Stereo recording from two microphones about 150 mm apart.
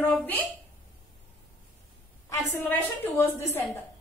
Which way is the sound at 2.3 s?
15° left (ahead or behind).